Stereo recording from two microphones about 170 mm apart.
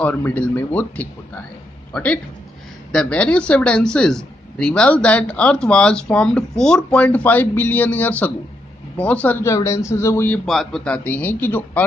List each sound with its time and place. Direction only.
0.0 s a man's voice: 10° left (ahead or behind)
10.4 s speech: centre (ahead or behind)